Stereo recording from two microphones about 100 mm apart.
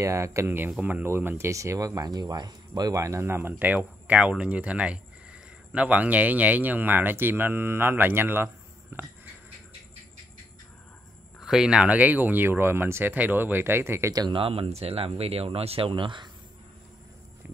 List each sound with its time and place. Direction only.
0.0 s speech: 30° right (ahead or behind)
0.7 s speech: 15° right (ahead or behind)
11.3 s speech: 5° right (ahead or behind); by 14.1 s 25° right (ahead or behind)
14.3 s speech: 65° right (ahead or behind)
15.9 s speech: 55° right (ahead or behind)